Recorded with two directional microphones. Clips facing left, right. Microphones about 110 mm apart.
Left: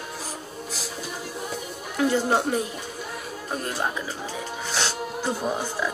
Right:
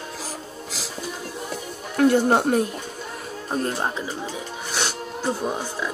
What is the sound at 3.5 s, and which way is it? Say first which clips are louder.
Speech: right 3 dB; 25° right (ahead or behind).